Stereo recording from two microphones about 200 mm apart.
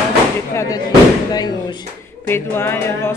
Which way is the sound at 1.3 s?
20° left (ahead or behind).